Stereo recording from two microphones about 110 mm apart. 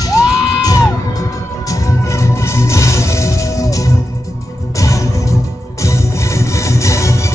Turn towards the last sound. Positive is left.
turn(degrees=25)  # may be behind; listen again after turning